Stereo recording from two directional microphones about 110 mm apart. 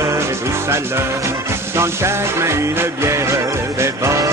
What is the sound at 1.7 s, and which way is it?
Music, 25° right (ahead or behind).